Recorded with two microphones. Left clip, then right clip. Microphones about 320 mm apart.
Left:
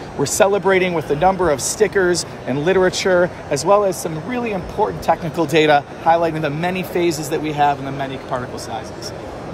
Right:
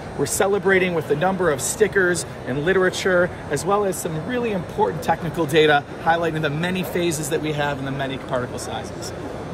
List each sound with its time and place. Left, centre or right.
0.2 s speech: left